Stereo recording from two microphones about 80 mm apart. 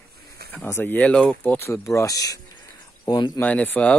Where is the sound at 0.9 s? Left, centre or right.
Centre.